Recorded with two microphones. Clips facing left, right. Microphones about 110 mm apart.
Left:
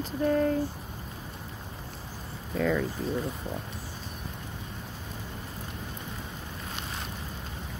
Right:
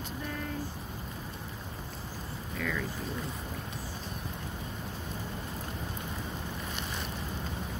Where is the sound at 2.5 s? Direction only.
35° left (ahead or behind).